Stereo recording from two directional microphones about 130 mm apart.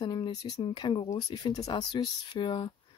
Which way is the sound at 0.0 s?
35° left (ahead or behind).